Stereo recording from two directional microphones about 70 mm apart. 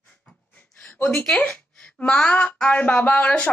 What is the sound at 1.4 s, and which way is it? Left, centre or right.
Speech, centre.